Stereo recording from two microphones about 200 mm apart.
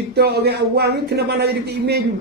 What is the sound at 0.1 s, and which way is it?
Speech, 55° right (ahead or behind).